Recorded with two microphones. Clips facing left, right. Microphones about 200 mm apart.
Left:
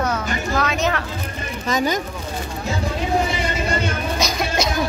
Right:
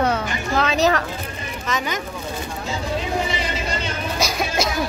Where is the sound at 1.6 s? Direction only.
35° left (ahead or behind).